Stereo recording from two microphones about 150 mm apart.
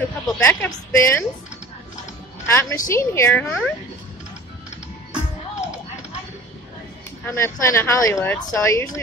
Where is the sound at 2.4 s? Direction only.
15° left (ahead or behind).